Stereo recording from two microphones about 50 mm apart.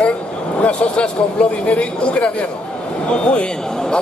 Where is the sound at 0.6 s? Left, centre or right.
Left.